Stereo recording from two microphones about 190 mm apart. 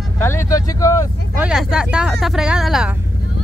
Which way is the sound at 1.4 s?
5° right (ahead or behind).